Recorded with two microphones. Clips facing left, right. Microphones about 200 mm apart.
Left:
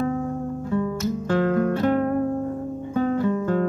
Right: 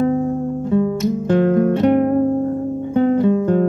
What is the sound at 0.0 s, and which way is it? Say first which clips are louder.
Music: right 7 dB; 20° right (ahead or behind).